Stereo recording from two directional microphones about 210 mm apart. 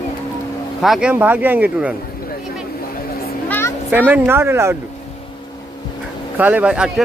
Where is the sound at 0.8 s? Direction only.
5° right (ahead or behind).